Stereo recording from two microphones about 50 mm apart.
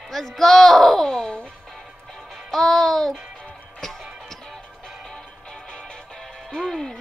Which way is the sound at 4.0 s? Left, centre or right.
Centre.